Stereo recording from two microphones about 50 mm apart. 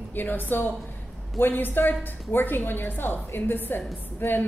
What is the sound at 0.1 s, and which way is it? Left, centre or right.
A woman's voice, left.